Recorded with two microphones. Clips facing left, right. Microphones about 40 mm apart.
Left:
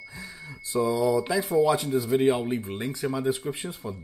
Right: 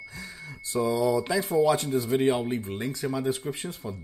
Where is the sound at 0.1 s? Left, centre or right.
Centre.